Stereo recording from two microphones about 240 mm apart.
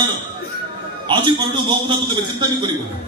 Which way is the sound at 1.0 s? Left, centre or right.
Centre.